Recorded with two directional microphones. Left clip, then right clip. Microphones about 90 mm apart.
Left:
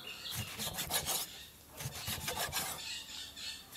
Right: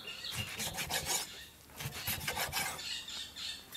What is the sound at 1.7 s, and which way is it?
Filing, 5° right (ahead or behind).